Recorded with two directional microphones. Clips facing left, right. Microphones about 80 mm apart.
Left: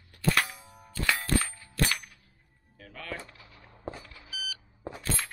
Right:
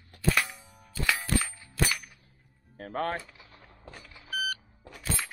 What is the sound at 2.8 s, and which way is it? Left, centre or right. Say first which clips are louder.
Speech: right 9 dB; right.